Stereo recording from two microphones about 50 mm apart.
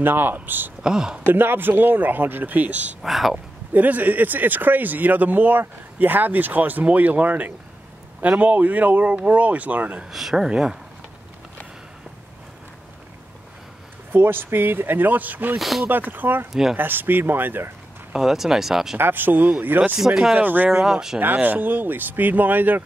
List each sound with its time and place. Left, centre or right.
0.0 s speech: right
0.8 s speech: centre
1.2 s speech: right
3.0 s speech: centre
3.7 s speech: right
10.1 s speech: centre
14.1 s speech: right
15.6 s speech: centre
15.9 s speech: right
18.1 s speech: centre
18.9 s speech: right
20.7 s speech: centre
21.2 s speech: right